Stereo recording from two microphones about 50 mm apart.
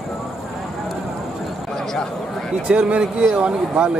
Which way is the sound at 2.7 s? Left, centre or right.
Right.